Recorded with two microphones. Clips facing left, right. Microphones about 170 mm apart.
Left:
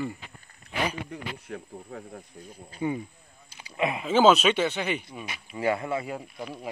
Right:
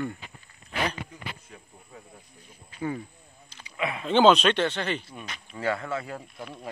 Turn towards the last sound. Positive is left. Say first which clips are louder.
# left 3 dB
turn(degrees=0)  # may be behind; listen again after turning